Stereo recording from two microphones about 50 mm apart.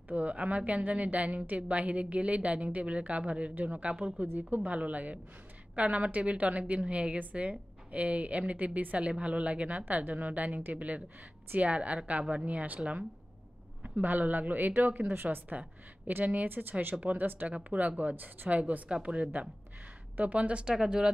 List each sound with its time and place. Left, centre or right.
0.1 s a woman's voice: right
17.5 s a woman's voice: right
18.6 s a woman's voice: right